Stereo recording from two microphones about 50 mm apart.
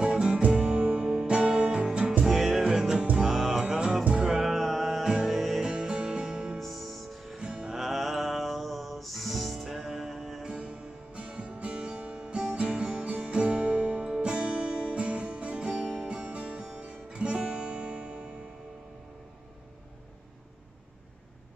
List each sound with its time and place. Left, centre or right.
0.0 s music: centre
5.7 s music: centre
6.6 s music: centre
7.3 s music: centre
7.7 s music: centre
10.5 s music: right